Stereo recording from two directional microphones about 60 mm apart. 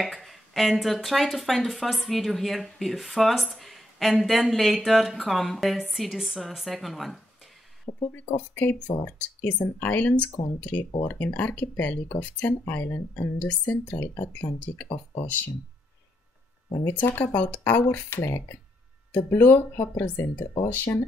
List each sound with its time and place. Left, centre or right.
0.0 s speech: centre
8.1 s speech: left
17.2 s speech: left
18.1 s speech: left